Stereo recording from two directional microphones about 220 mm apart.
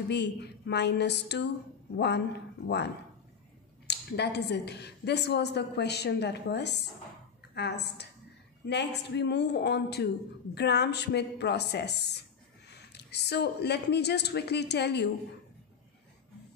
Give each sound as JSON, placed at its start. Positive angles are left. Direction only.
{"t": 0.1, "sound": "a woman's voice", "side_deg": 50}
{"t": 3.8, "sound": "a woman's voice", "side_deg": 50}